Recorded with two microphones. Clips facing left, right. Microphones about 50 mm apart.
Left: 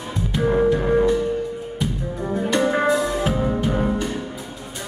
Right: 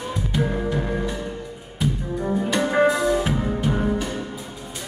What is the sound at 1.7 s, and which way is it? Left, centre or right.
Music, centre.